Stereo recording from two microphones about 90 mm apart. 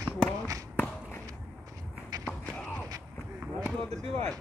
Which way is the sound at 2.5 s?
10° left (ahead or behind).